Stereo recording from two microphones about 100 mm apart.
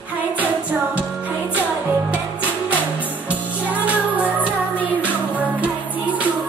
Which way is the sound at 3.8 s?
15° right (ahead or behind).